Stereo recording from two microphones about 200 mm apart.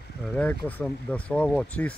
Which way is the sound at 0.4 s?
10° left (ahead or behind).